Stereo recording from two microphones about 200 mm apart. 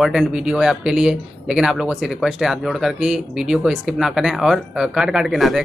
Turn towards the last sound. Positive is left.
turn(degrees=0)  # may be behind; listen again after turning